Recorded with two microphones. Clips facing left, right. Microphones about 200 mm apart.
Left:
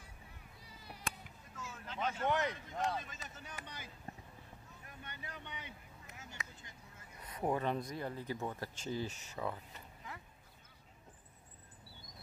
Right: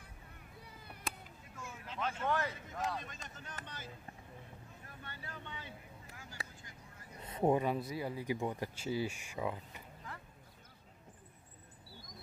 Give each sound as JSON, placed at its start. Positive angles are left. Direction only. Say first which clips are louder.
{"t": 0.6, "sound": "cat", "louder": "right 1 dB", "side_deg": -55}
{"t": 1.6, "sound": "vehicle", "louder": "even", "side_deg": -10}
{"t": 1.9, "sound": "vehicle", "louder": "left 1 dB", "side_deg": 5}
{"t": 2.2, "sound": "speech", "louder": "left 1 dB", "side_deg": 20}
{"t": 2.5, "sound": "speech", "louder": "left 2 dB", "side_deg": 0}
{"t": 5.0, "sound": "speech", "louder": "right 1 dB", "side_deg": 20}
{"t": 6.4, "sound": "vehicle", "louder": "right 3 dB", "side_deg": -35}
{"t": 7.2, "sound": "honk", "louder": "right 5 dB", "side_deg": -25}
{"t": 7.6, "sound": "speech", "louder": "right 2 dB", "side_deg": -5}